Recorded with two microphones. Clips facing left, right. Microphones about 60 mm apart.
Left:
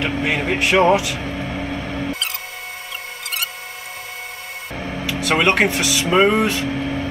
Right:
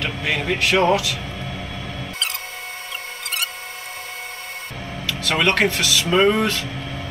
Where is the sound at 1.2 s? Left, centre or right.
Left.